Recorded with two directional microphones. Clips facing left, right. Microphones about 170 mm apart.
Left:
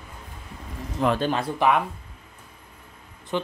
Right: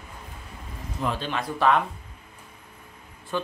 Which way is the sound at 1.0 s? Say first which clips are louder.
Left 6 dB; 80° left.